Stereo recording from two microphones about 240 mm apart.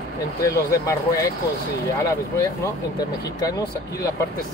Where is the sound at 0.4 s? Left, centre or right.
Centre.